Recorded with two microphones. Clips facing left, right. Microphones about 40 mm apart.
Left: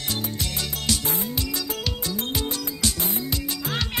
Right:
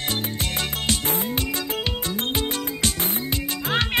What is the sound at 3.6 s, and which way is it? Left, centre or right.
Music, right.